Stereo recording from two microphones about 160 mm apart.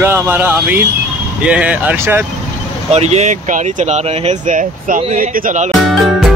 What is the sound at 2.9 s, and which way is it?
Speech, 45° right (ahead or behind).